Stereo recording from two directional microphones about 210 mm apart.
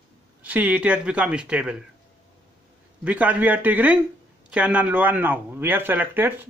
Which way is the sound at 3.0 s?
5° right (ahead or behind).